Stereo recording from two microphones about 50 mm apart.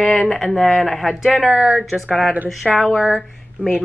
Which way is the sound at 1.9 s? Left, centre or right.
Centre.